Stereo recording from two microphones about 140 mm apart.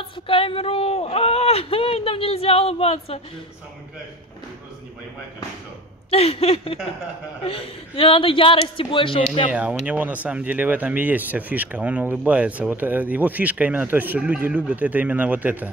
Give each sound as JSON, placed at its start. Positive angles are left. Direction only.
{"t": 0.0, "sound": "speech", "side_deg": 40}
{"t": 6.0, "sound": "speech", "side_deg": 45}
{"t": 9.5, "sound": "speech", "side_deg": -10}